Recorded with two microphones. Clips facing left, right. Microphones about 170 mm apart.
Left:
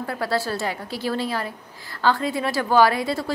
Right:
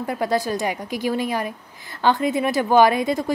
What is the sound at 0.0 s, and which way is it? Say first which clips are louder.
A woman's voice: right 3 dB; 20° right (ahead or behind).